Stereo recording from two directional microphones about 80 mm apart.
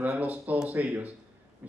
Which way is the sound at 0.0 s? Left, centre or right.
Right.